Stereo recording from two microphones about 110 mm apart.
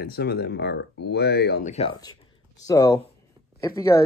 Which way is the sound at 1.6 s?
90° left.